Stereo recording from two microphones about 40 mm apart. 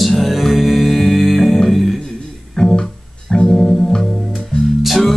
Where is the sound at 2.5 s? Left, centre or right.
Centre.